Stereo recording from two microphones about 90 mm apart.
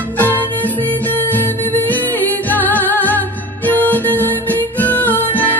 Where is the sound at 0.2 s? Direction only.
20° left (ahead or behind).